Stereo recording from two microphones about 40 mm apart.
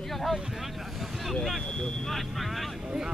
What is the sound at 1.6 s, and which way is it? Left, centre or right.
Speech, centre.